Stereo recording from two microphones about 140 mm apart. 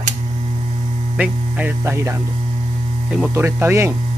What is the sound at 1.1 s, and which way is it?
Speech, 10° right (ahead or behind).